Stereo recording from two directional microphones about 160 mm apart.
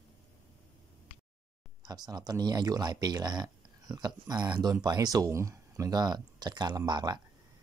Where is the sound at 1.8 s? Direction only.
25° right (ahead or behind).